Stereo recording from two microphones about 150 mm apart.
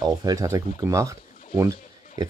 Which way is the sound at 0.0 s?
25° right (ahead or behind).